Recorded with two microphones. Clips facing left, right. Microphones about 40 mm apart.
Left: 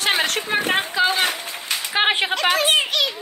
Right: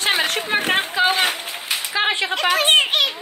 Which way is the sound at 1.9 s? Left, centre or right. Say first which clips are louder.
Left 2 dB; centre.